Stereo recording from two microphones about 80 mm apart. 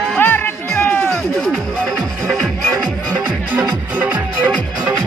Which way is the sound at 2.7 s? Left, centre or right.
Right.